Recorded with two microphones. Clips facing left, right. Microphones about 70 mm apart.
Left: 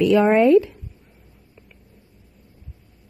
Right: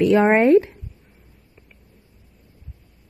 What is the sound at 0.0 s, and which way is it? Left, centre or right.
Speech, right.